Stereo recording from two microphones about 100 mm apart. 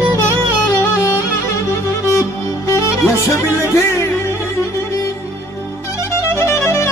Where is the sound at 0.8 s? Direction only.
25° left (ahead or behind).